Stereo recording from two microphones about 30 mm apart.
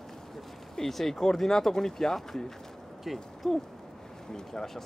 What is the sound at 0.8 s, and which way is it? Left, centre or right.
Speech, centre.